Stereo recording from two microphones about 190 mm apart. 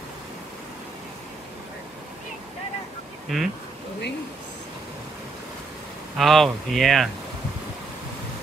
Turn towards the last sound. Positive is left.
turn(degrees=0)  # may be behind; listen again after turning